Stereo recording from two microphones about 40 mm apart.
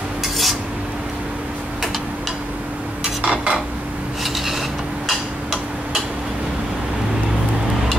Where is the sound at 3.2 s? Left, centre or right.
Right.